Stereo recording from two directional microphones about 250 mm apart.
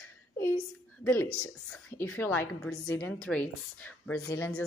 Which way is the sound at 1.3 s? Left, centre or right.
Left.